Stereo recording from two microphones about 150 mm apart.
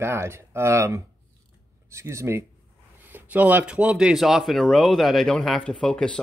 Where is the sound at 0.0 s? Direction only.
15° right (ahead or behind).